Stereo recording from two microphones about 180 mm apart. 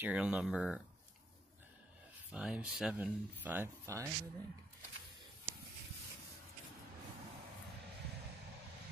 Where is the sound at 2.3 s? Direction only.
5° right (ahead or behind).